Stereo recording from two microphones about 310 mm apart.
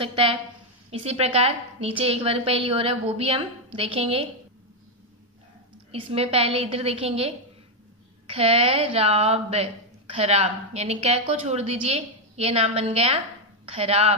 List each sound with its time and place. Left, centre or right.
0.0 s a woman's voice: centre
5.9 s a woman's voice: centre